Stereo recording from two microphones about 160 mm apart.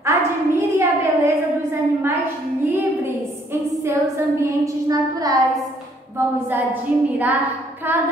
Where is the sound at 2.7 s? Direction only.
15° right (ahead or behind).